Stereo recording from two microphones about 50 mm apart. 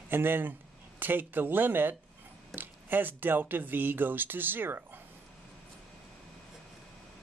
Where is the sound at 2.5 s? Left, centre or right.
Right.